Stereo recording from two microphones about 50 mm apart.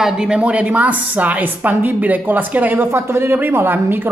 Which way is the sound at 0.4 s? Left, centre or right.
Right.